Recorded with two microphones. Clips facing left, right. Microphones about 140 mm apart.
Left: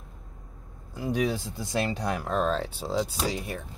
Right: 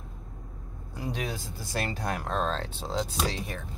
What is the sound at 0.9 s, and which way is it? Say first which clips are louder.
Speech: left 6 dB; 5° left (ahead or behind).